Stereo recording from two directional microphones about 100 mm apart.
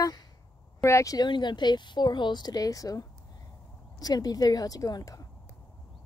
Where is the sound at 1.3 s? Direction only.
50° left (ahead or behind).